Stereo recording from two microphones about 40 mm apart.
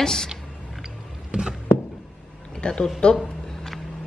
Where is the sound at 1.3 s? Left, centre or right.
Right.